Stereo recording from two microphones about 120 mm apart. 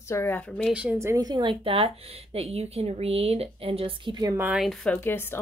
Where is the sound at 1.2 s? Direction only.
40° right (ahead or behind).